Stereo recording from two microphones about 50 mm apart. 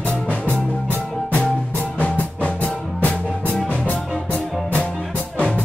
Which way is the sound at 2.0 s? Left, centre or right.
Left.